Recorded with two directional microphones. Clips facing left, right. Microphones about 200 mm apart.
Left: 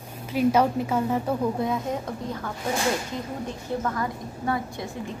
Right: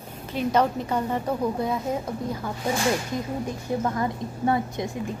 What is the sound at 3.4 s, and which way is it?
A woman's voice, 20° right (ahead or behind).